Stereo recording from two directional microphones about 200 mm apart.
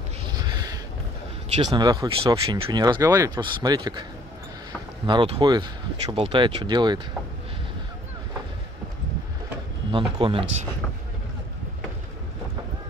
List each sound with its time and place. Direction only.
0.4 s a sound: 20° right (ahead or behind)
1.7 s speech: 20° right (ahead or behind)
5.0 s speech: 25° right (ahead or behind)
9.8 s speech: 25° right (ahead or behind)